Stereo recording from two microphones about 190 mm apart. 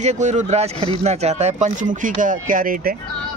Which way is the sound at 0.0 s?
40° right (ahead or behind).